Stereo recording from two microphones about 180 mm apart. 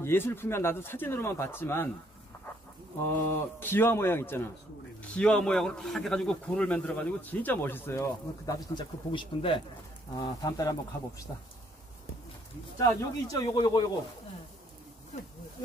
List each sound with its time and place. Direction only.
0.0 s speech: 15° left (ahead or behind)
3.5 s speech: 10° left (ahead or behind)
12.8 s speech: 20° left (ahead or behind)